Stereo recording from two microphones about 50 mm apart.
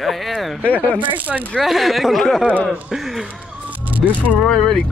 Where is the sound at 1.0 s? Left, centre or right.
Right.